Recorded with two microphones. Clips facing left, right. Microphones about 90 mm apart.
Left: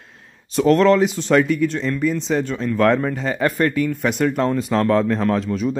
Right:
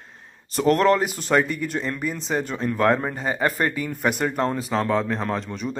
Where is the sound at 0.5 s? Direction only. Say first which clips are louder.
Left 4 dB; 5° right (ahead or behind).